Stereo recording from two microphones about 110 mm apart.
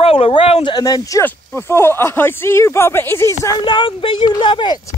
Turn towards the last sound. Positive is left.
turn(degrees=45)  # may be behind; listen again after turning